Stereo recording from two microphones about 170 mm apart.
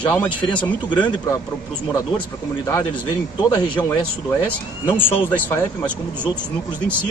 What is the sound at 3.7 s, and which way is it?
A man's voice, 10° left (ahead or behind).